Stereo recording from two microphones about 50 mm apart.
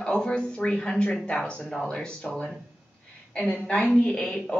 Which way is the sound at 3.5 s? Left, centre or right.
Centre.